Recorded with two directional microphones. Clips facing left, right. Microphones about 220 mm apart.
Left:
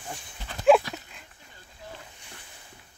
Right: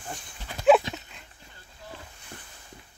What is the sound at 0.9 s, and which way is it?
Dog, 25° right (ahead or behind).